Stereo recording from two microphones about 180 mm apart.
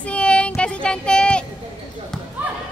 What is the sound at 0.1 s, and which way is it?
Child singing, 5° left (ahead or behind).